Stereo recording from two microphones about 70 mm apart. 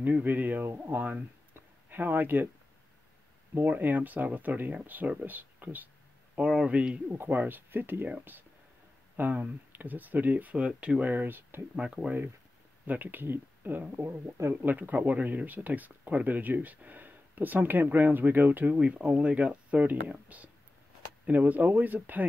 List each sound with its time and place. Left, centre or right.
0.0 s speech: right
3.5 s speech: right
6.3 s speech: centre
7.2 s speech: right
11.1 s speech: right
11.7 s speech: centre
12.8 s speech: right
14.0 s speech: right
14.5 s speech: right
18.8 s speech: centre